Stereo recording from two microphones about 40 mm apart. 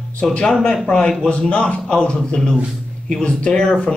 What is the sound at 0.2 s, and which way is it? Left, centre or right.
Speech, left.